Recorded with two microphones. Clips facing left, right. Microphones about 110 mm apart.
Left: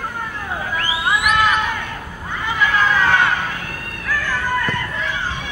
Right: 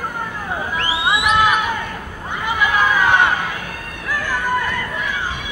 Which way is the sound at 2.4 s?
15° right (ahead or behind).